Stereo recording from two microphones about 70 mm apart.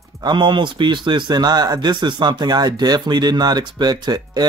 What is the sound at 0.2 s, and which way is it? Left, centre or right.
Speech, right.